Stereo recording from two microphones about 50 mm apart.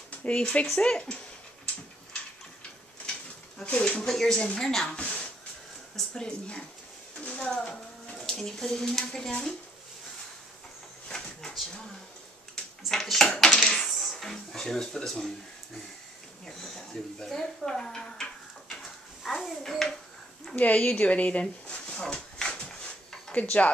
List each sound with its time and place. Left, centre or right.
0.2 s speech: left
3.6 s speech: left
4.0 s speech: centre
7.2 s a sound: left
8.4 s speech: centre
11.1 s a sound: centre
12.8 s speech: centre
13.3 s a sound: centre
14.2 s speech: centre
16.4 s speech: centre
17.2 s dishes: centre
20.5 s speech: left
21.9 s dog: centre
23.3 s speech: left